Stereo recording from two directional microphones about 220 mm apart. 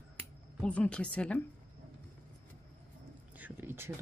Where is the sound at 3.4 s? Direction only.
10° right (ahead or behind).